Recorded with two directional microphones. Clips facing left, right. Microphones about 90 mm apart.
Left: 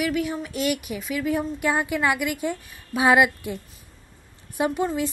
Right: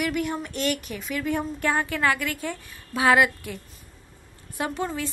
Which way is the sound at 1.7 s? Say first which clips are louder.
Left 1 dB; 15° left (ahead or behind).